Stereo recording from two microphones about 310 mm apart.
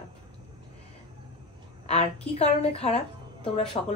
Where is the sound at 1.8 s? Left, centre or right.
Centre.